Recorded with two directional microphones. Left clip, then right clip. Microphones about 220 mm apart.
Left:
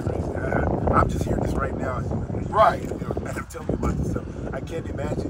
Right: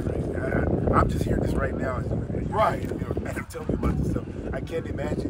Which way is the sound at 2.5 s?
10° left (ahead or behind).